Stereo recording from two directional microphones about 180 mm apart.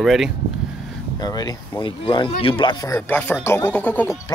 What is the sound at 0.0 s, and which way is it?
Speech, centre (ahead or behind).